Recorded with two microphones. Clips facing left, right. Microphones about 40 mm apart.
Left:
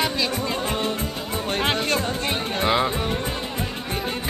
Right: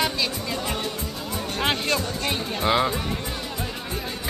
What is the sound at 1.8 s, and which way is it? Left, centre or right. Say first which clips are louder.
Speech: left 1 dB; left.